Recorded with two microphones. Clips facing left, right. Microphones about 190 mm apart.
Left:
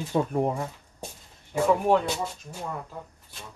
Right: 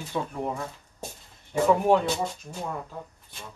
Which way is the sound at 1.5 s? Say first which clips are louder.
Right 1 dB; centre (ahead or behind).